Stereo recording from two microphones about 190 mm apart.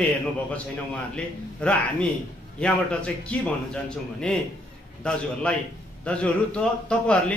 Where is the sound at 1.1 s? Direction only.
5° left (ahead or behind).